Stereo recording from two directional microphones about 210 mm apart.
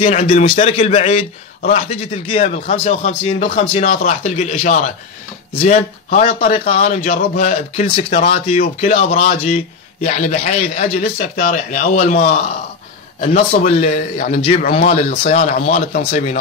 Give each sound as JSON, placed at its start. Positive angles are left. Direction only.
{"t": 0.0, "sound": "a man's voice", "side_deg": 35}